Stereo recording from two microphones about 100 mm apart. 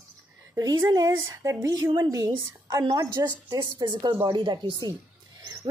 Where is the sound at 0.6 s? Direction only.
40° right (ahead or behind).